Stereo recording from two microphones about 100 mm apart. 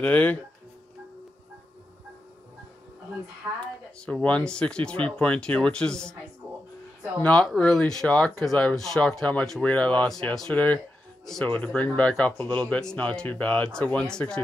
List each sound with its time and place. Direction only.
0.0 s speech: 15° left (ahead or behind)
4.0 s speech: 15° left (ahead or behind)
7.2 s speech: 10° left (ahead or behind)